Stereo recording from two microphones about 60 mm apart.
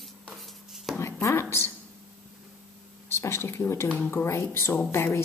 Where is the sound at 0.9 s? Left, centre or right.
Left.